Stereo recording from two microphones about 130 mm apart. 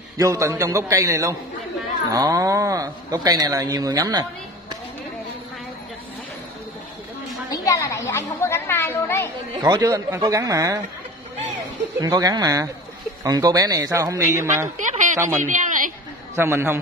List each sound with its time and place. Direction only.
0.2 s speech: 25° right (ahead or behind)
7.5 s a sound: 25° left (ahead or behind)
9.6 s speech: 30° right (ahead or behind)
12.0 s speech: 30° right (ahead or behind)
15.2 s speech: 80° right
16.3 s speech: 20° right (ahead or behind)